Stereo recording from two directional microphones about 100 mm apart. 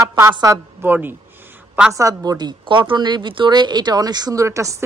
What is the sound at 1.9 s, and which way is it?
A woman's voice, 35° right (ahead or behind).